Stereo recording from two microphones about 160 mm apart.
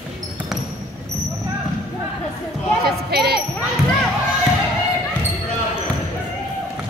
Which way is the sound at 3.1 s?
80° right.